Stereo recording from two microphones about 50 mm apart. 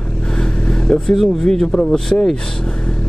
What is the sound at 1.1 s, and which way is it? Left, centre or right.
Speech, centre.